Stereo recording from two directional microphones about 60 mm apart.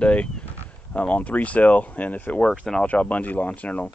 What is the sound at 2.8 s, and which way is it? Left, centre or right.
Speech, left.